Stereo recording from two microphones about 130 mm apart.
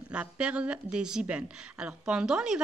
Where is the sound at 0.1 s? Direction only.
10° right (ahead or behind).